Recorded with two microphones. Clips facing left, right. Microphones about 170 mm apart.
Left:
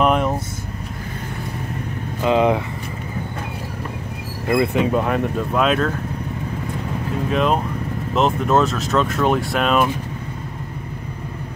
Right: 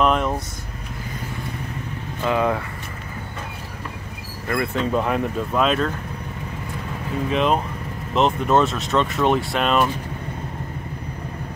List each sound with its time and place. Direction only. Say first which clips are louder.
0.0 s vehicle: left 2 dB; 5° left (ahead or behind)
2.2 s speech: left 4 dB; 20° left (ahead or behind)
4.5 s speech: left 6 dB; 15° left (ahead or behind)
4.9 s speech: left 2 dB; centre (ahead or behind)
7.2 s speech: left 1 dB; centre (ahead or behind)